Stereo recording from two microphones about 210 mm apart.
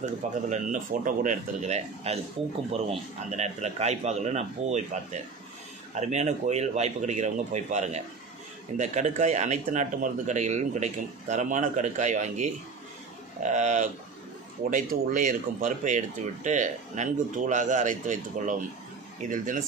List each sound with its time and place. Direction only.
0.0 s speech: 35° right (ahead or behind)